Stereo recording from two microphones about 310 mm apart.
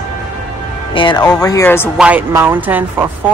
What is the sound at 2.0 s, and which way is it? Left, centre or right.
Speech, centre.